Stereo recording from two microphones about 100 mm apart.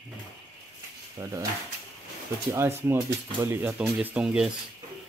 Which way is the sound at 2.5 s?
25° right (ahead or behind).